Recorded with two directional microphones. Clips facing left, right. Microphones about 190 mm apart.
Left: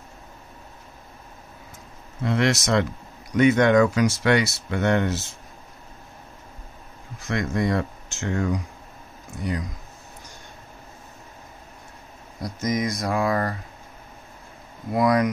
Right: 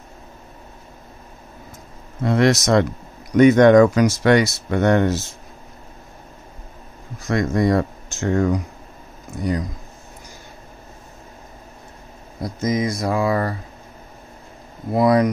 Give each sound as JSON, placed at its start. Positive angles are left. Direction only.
{"t": 2.2, "sound": "speech", "side_deg": -40}
{"t": 7.2, "sound": "speech", "side_deg": -40}
{"t": 12.4, "sound": "speech", "side_deg": -25}
{"t": 14.9, "sound": "speech", "side_deg": -30}